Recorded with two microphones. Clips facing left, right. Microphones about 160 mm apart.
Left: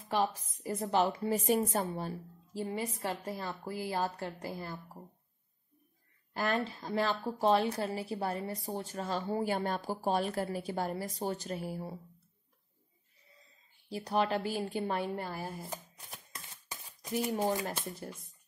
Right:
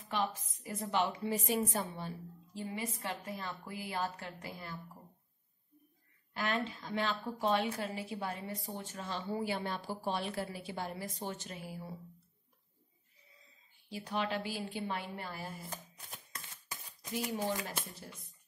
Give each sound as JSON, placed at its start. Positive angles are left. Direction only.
{"t": 0.1, "sound": "a woman's voice", "side_deg": 35}
{"t": 6.3, "sound": "a woman's voice", "side_deg": 40}
{"t": 13.8, "sound": "a woman's voice", "side_deg": 40}
{"t": 17.3, "sound": "a woman's voice", "side_deg": 45}